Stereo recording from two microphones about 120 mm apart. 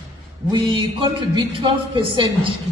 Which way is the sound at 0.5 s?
45° right (ahead or behind).